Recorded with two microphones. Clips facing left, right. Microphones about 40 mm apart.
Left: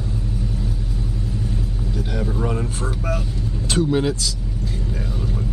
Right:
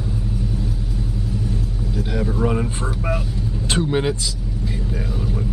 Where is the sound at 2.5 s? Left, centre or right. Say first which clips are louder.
Right 2 dB; centre.